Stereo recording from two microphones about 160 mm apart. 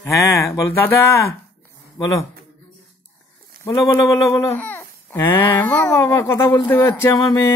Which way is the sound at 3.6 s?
20° left (ahead or behind).